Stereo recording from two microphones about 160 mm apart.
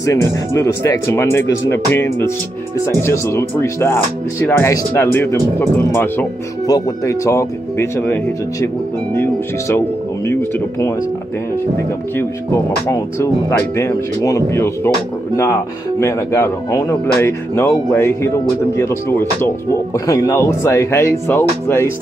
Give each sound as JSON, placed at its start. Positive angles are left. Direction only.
{"t": 0.0, "sound": "speech", "side_deg": 20}
{"t": 9.1, "sound": "music", "side_deg": 15}
{"t": 12.2, "sound": "speech", "side_deg": 15}
{"t": 16.0, "sound": "speech", "side_deg": 15}